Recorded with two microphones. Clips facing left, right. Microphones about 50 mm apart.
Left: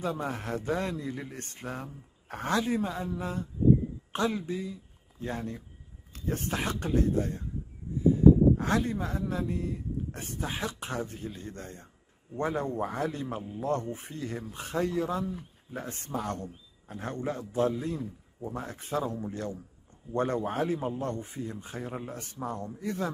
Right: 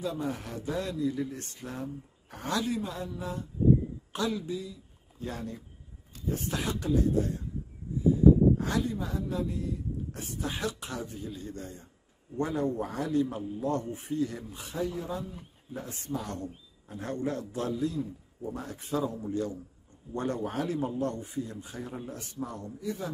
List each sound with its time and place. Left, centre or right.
0.0 s speech: left
2.2 s speech: left
2.5 s speech: left
6.1 s speech: left
8.5 s speech: left
10.4 s speech: left
14.8 s speech: left
15.7 s speech: left
22.8 s a man's voice: left